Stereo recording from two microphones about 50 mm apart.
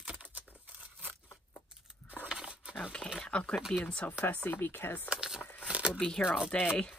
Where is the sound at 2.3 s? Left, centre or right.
Centre.